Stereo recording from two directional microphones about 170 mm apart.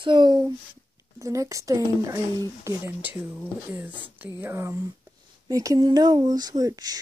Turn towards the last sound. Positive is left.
turn(degrees=-20)  # may be behind; listen again after turning